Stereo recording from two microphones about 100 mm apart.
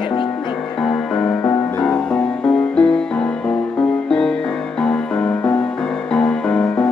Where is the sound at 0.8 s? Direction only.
10° left (ahead or behind).